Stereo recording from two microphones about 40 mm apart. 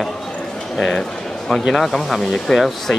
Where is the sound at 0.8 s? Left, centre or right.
Centre.